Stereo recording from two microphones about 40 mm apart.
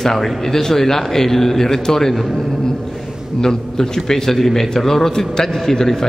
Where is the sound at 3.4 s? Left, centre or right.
Centre.